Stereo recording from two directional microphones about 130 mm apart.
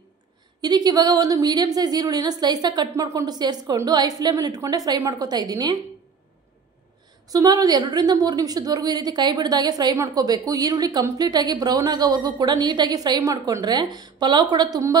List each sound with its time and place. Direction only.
0.6 s a woman's voice: 30° right (ahead or behind)
7.2 s a woman's voice: 30° right (ahead or behind)